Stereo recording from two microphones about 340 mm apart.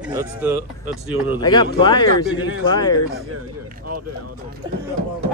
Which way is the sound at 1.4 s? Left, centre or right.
Centre.